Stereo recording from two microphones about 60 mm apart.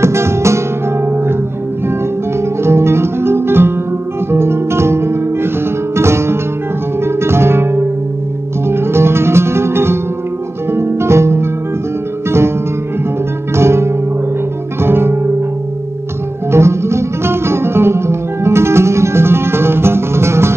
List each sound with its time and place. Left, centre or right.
0.0 s music: right
1.0 s music: right
2.6 s music: right
13.6 s music: right
16.5 s music: right